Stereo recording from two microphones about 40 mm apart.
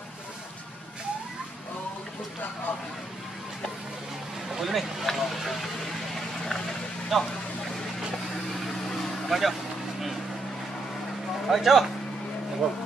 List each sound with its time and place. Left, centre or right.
4.5 s a sound: centre
5.0 s speech: centre
6.1 s vehicle: centre
7.1 s speech: centre
8.5 s a sound: centre
9.3 s vehicle: centre
11.4 s speech: centre